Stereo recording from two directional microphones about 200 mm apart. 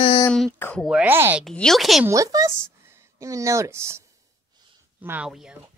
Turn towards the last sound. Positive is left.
turn(degrees=-5)  # may be behind; listen again after turning